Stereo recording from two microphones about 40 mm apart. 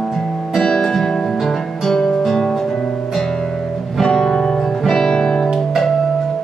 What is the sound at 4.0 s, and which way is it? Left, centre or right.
Music, centre.